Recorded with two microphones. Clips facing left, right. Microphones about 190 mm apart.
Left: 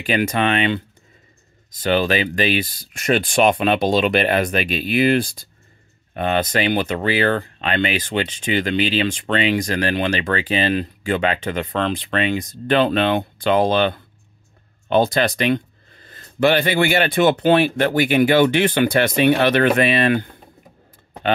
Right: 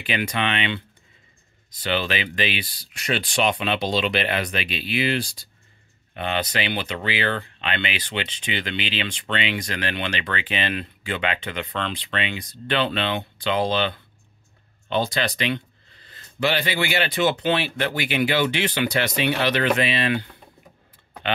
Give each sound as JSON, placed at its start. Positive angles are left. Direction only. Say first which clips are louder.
{"t": 0.0, "sound": "speech", "louder": "left 6 dB", "side_deg": 45}